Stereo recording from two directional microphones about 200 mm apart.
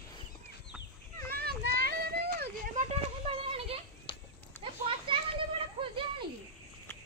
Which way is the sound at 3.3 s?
30° right (ahead or behind).